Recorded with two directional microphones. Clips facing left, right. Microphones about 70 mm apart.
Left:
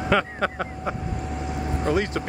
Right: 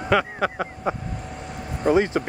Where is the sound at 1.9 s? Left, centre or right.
Centre.